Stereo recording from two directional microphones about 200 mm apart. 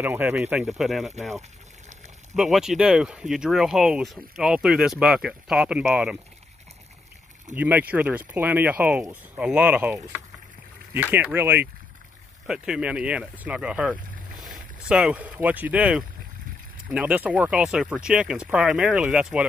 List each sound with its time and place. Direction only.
0.0 s speech: 10° right (ahead or behind)
2.3 s speech: centre (ahead or behind)
7.5 s speech: 10° right (ahead or behind)